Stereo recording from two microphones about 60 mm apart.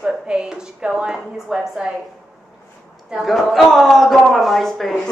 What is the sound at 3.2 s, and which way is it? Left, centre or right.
Speech, centre.